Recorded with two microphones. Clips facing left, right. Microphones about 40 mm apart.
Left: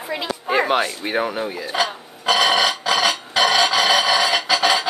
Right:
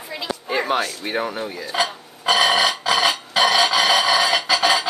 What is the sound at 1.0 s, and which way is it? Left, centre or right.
Speech, centre.